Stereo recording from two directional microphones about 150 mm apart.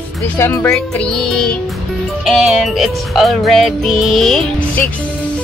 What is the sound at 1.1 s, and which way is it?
Music, 5° left (ahead or behind).